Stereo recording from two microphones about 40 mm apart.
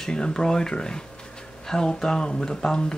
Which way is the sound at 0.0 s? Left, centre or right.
Centre.